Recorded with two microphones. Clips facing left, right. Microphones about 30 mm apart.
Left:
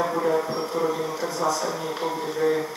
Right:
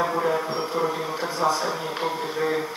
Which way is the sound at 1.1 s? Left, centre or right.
Right.